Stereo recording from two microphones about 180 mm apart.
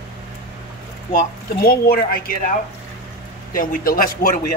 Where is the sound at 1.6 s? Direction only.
55° left (ahead or behind).